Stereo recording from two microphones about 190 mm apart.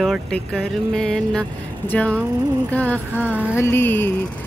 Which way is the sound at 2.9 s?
10° right (ahead or behind).